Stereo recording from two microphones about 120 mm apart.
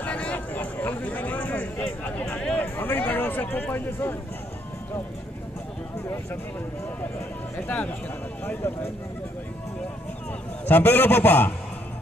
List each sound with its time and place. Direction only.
0.0 s a sound: 10° left (ahead or behind)
2.6 s speech: 15° left (ahead or behind)
7.5 s a man's voice: 15° left (ahead or behind)
10.7 s a man's voice: 15° left (ahead or behind)